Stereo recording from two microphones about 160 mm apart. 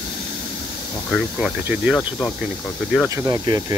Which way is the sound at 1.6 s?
5° right (ahead or behind).